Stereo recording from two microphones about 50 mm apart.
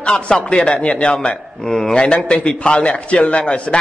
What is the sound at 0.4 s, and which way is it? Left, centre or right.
A man's voice, left.